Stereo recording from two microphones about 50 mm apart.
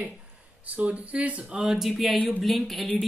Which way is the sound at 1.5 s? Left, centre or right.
Centre.